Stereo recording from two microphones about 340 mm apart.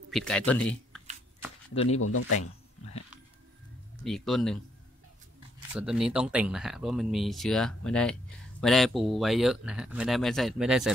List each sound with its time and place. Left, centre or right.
0.1 s speech: centre
1.8 s speech: left
4.0 s speech: centre
5.6 s speech: centre